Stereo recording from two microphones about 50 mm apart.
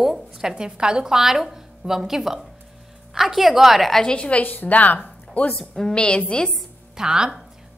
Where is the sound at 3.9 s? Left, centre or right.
Centre.